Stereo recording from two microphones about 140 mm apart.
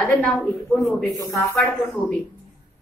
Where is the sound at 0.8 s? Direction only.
25° left (ahead or behind).